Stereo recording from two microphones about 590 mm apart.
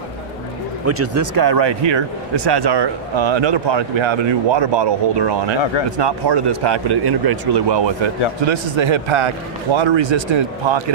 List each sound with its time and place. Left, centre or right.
0.8 s speech: right
5.9 s speech: right